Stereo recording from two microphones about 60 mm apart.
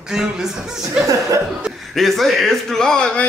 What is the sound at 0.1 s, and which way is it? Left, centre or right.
Speech, centre.